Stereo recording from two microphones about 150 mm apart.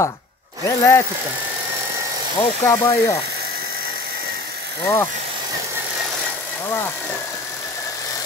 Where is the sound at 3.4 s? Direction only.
90° right.